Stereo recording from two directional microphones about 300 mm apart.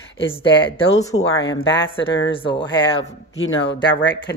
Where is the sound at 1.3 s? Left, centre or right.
Left.